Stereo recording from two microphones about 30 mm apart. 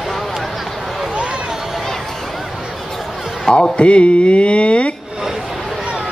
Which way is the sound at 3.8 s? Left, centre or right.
Left.